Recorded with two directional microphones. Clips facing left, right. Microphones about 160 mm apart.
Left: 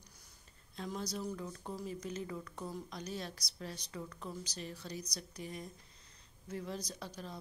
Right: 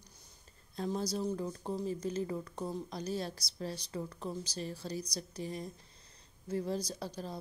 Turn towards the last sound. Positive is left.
turn(degrees=-35)  # may be behind; listen again after turning